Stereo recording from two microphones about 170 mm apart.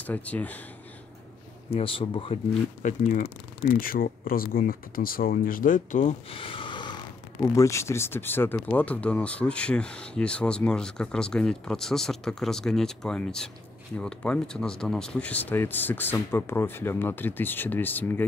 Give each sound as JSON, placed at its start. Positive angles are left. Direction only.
{"t": 0.0, "sound": "speech", "side_deg": 10}
{"t": 1.7, "sound": "speech", "side_deg": 35}
{"t": 2.8, "sound": "speech", "side_deg": 50}
{"t": 6.3, "sound": "a sound", "side_deg": 30}
{"t": 7.5, "sound": "speech", "side_deg": 15}